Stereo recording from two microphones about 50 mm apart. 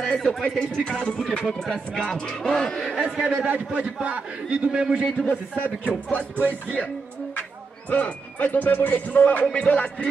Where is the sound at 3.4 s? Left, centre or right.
Right.